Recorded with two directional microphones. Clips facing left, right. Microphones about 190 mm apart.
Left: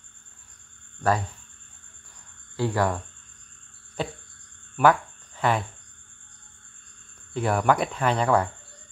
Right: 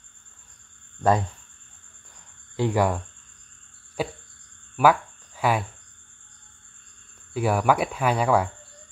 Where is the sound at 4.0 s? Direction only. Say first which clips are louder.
Right 2 dB; 10° right (ahead or behind).